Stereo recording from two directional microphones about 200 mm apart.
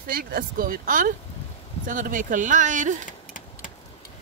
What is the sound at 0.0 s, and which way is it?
Speech, 45° right (ahead or behind).